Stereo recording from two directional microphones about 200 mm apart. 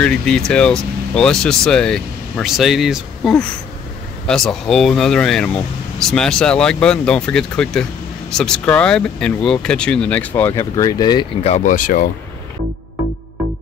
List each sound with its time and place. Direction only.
0.0 s speech: 5° left (ahead or behind); by 11.2 s 20° left (ahead or behind)
11.4 s speech: 35° left (ahead or behind)